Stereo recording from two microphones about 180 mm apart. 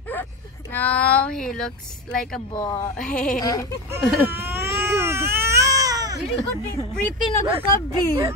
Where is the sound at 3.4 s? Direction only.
20° left (ahead or behind).